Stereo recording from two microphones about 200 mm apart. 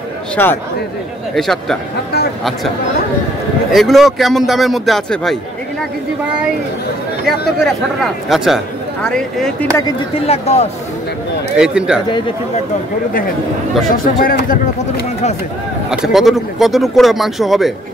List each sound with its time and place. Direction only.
0.4 s speech: 10° left (ahead or behind)
3.7 s speech: centre (ahead or behind)
7.6 s speech: centre (ahead or behind)
10.2 s speech: 30° left (ahead or behind)
11.5 s speech: 5° right (ahead or behind)
14.0 s speech: 45° left (ahead or behind)
15.9 s speech: centre (ahead or behind)